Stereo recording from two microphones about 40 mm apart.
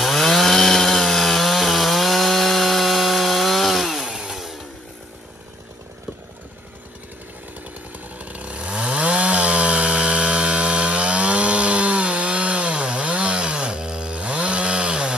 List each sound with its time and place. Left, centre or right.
0.0 s chainsaw: centre
8.2 s chainsaw: right